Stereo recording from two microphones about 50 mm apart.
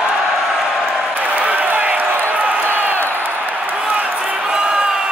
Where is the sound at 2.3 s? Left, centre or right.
Right.